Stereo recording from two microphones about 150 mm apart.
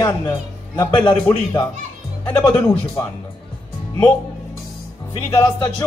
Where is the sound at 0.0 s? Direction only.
15° left (ahead or behind).